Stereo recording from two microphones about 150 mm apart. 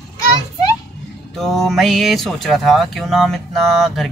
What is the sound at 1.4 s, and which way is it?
Speech, centre (ahead or behind).